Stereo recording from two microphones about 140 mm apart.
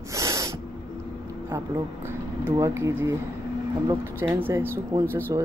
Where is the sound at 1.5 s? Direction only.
15° right (ahead or behind).